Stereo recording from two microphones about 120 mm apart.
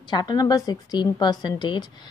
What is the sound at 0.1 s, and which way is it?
A woman's voice, 35° left (ahead or behind).